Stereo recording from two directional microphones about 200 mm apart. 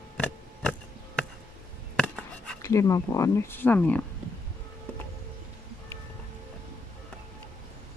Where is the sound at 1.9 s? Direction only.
5° left (ahead or behind).